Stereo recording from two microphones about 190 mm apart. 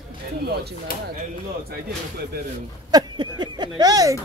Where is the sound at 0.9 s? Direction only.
50° left (ahead or behind).